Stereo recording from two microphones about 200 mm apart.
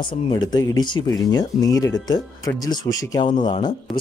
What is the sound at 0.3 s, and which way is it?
Speech, 20° left (ahead or behind).